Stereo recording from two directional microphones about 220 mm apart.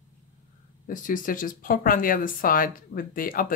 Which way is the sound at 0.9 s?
35° left (ahead or behind).